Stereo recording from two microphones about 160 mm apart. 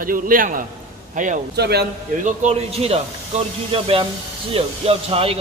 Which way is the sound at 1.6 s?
90° right.